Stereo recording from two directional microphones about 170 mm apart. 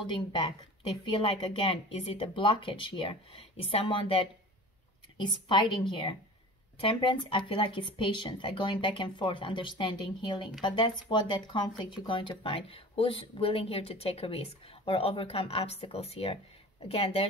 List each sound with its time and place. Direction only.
1.1 s speech: 35° left (ahead or behind)
5.2 s speech: 25° left (ahead or behind)